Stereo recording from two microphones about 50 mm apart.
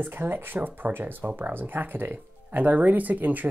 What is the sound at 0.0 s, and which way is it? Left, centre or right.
Speech, right.